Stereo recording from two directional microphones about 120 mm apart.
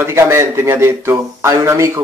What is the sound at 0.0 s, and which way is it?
Speech, 20° right (ahead or behind).